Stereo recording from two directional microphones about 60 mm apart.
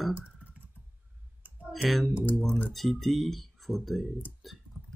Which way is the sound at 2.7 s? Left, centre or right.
Centre.